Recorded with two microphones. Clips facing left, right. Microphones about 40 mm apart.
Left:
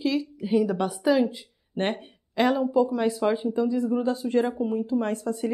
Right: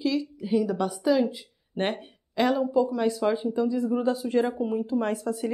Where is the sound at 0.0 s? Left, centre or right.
Centre.